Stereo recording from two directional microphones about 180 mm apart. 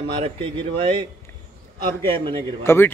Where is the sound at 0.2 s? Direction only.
30° right (ahead or behind).